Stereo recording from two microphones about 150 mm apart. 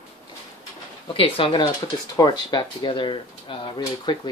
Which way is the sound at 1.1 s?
35° left (ahead or behind).